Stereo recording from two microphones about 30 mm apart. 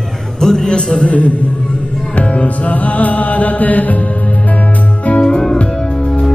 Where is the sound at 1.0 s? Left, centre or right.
Left.